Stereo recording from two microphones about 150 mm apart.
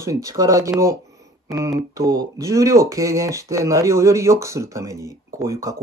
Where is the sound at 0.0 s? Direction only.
20° right (ahead or behind).